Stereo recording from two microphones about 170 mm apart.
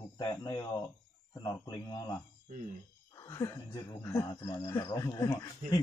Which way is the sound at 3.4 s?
20° left (ahead or behind).